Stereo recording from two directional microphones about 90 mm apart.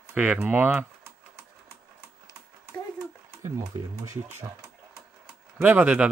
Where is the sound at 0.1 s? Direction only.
15° right (ahead or behind).